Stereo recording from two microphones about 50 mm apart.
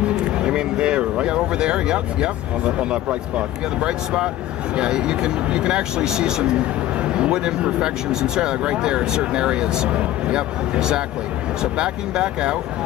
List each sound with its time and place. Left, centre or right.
0.0 s speech: centre